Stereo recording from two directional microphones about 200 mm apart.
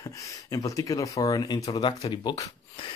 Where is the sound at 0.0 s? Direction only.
15° left (ahead or behind).